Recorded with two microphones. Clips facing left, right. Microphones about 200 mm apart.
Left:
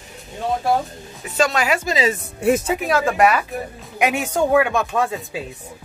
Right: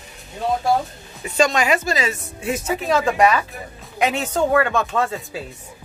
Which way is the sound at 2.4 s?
55° left (ahead or behind).